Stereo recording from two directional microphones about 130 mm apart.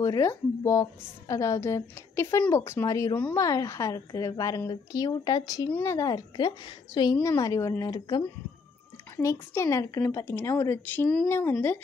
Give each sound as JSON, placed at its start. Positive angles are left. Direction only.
{"t": 0.0, "sound": "a woman's voice", "side_deg": 25}
{"t": 5.7, "sound": "speech", "side_deg": 15}
{"t": 5.9, "sound": "a woman's voice", "side_deg": 30}